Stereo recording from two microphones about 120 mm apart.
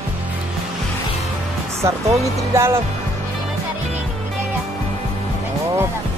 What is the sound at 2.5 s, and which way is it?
Music, 20° right (ahead or behind).